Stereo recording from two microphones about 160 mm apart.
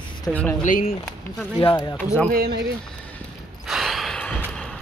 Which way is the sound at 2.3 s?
80° right.